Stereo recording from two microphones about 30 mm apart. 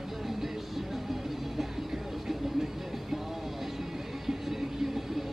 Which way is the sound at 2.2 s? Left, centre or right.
Centre.